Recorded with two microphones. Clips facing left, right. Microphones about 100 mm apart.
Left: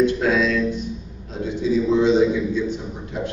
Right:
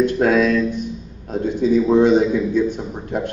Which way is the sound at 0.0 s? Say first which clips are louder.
Right 3 dB; 50° right (ahead or behind).